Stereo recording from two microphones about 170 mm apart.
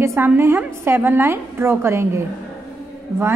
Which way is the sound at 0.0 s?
15° right (ahead or behind).